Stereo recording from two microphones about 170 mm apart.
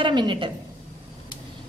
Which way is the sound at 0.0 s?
30° right (ahead or behind).